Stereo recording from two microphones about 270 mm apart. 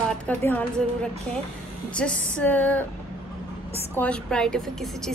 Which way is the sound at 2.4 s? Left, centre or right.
Centre.